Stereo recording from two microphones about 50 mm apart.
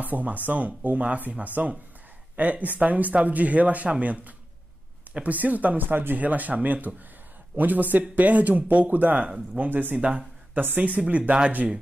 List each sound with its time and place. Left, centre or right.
0.0 s speech: right
9.9 s speech: right
10.6 s speech: right